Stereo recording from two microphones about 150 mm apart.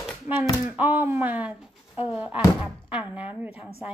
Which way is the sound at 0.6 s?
10° right (ahead or behind).